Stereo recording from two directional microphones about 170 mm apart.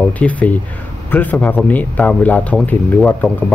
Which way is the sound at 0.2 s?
10° left (ahead or behind).